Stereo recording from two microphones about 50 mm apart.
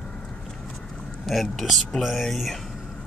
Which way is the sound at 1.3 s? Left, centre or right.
Centre.